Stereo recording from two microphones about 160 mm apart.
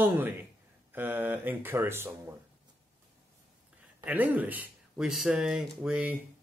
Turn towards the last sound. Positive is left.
turn(degrees=-10)  # may be behind; listen again after turning